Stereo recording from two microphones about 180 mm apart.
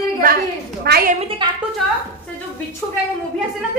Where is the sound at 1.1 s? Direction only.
30° right (ahead or behind).